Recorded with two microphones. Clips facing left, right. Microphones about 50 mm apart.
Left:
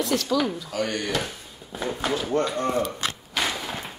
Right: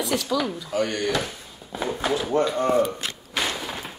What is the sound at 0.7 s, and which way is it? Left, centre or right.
Speech, right.